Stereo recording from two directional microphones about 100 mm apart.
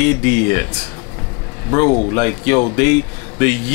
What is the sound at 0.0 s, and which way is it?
Speech, 15° left (ahead or behind).